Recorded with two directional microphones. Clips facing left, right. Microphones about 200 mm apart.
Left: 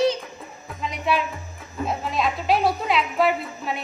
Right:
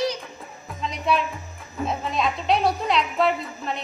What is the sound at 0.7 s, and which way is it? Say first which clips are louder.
A woman's voice: even; centre (ahead or behind).